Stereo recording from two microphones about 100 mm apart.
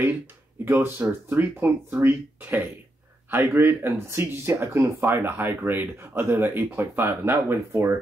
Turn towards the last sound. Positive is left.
turn(degrees=-25)  # may be behind; listen again after turning